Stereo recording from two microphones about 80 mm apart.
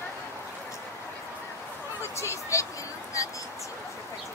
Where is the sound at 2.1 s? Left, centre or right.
Left.